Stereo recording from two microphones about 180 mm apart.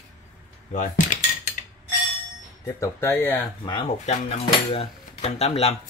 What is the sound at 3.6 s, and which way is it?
Speech, 25° left (ahead or behind).